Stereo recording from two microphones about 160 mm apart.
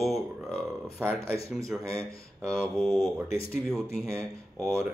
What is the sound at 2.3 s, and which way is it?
Speech, centre (ahead or behind).